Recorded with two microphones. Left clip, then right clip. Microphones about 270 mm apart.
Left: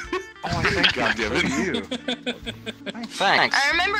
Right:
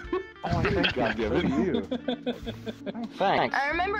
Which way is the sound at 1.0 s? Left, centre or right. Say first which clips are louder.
Left 5 dB; left.